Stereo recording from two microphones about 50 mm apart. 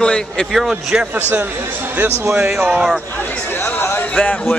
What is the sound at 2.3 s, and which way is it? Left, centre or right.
Speech, centre.